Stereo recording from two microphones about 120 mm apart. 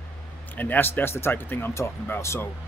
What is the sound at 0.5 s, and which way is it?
Speech, 15° left (ahead or behind).